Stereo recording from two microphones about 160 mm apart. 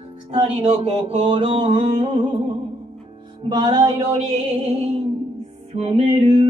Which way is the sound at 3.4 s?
25° right (ahead or behind).